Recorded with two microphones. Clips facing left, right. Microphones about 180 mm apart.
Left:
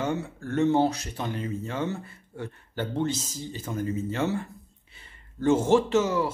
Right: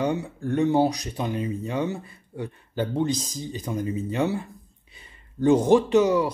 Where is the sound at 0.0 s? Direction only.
15° right (ahead or behind).